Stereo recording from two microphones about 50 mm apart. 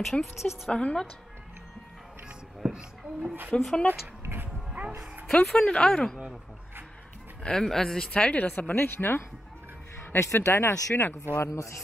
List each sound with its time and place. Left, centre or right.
0.0 s a woman's voice: centre
0.7 s a woman's voice: left
2.6 s a child's voice: right
3.5 s speech: centre
5.3 s speech: centre
5.7 s speech: centre
7.4 s speech: centre
8.3 s speech: left
10.1 s speech: left
10.5 s speech: left
11.3 s speech: left